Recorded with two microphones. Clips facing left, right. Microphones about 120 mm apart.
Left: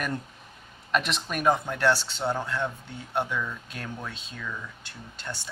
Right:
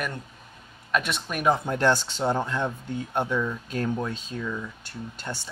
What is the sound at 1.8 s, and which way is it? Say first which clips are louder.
Speech: right 2 dB; 20° right (ahead or behind).